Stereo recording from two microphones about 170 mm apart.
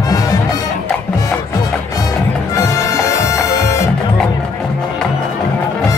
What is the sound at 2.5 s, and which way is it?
Music, 20° left (ahead or behind).